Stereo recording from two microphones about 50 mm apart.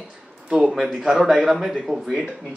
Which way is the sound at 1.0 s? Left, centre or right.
Centre.